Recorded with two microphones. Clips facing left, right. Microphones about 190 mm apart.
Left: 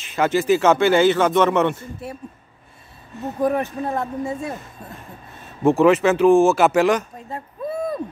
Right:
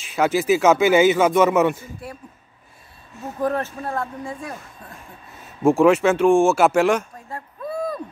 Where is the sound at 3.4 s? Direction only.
15° left (ahead or behind).